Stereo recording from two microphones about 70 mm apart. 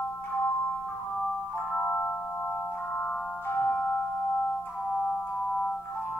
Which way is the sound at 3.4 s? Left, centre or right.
Left.